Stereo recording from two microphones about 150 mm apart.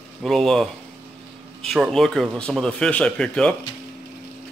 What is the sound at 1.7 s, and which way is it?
Speech, centre (ahead or behind).